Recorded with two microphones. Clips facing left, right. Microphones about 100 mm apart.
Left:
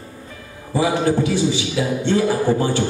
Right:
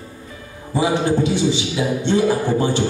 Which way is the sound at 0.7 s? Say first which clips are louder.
Even; 20° right (ahead or behind).